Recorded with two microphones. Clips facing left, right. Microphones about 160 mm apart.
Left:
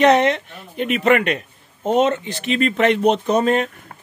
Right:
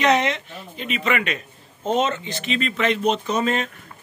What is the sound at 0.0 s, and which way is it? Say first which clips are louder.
Speech: left 5 dB; 55° left (ahead or behind).